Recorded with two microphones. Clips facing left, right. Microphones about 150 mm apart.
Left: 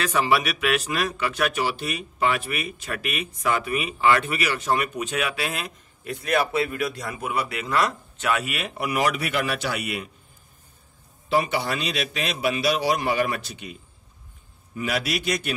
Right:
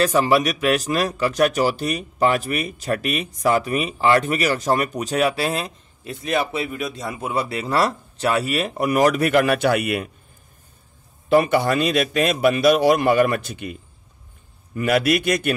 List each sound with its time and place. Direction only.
0.0 s speech: 40° right (ahead or behind); by 10.0 s 55° right (ahead or behind)
11.2 s a man's voice: 50° right (ahead or behind)